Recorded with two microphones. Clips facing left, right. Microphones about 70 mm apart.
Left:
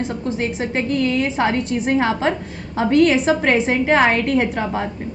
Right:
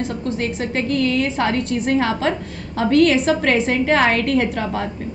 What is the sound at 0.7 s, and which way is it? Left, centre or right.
A woman's voice, centre.